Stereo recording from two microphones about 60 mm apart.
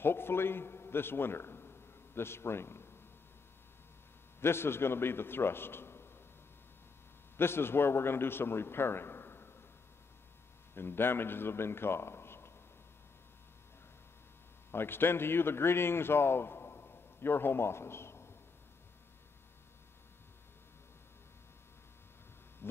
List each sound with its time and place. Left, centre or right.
0.0 s a sound: left
4.4 s a man's voice: left
7.3 s a man's voice: left
10.7 s a man's voice: left
14.7 s speech: left